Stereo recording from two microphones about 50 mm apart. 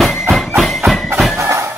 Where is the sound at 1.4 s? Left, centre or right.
Right.